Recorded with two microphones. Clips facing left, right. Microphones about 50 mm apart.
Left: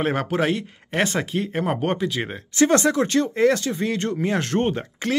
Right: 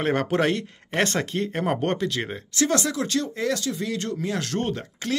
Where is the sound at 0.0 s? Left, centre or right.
Centre.